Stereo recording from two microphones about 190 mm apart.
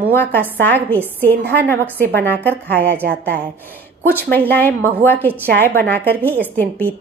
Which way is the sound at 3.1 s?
60° right (ahead or behind).